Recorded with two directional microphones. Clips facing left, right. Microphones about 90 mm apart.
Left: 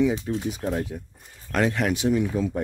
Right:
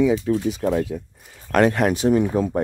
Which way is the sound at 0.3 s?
85° right.